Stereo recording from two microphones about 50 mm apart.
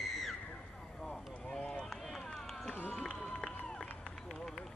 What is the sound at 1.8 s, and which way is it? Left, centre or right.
Run, centre.